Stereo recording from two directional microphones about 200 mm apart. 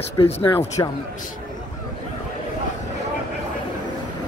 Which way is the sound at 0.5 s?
15° left (ahead or behind).